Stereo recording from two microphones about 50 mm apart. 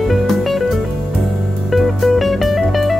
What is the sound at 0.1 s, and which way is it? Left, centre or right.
Music, centre.